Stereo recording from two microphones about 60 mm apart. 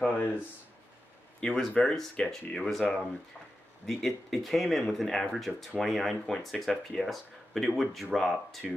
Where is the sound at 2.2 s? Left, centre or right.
Centre.